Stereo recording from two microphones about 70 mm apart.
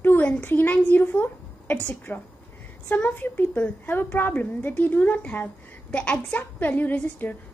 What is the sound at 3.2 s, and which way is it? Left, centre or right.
A woman's voice, left.